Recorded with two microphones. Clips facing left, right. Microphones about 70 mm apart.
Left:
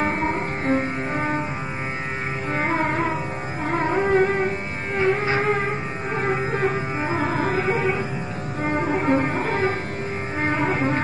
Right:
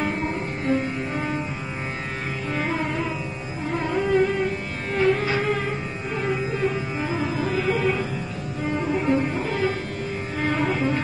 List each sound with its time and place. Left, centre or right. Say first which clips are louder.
0.0 s music: left 3 dB; left
2.5 s music: left 4 dB; left
8.6 s music: left 2 dB; left